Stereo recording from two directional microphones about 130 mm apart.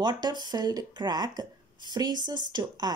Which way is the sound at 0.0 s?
35° right (ahead or behind).